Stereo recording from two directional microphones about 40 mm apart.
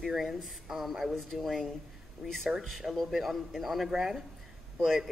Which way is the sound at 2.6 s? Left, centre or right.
Centre.